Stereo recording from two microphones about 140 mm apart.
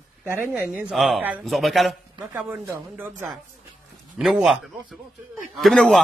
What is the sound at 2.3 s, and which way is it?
Speech, 15° right (ahead or behind).